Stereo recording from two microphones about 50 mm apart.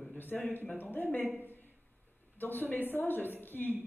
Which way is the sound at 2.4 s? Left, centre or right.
Left.